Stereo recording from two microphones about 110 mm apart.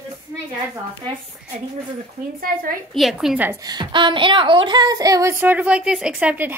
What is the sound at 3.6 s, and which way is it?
Speech, 40° right (ahead or behind).